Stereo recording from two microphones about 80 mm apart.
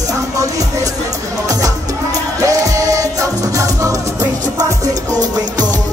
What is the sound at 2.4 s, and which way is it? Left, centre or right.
Music, right.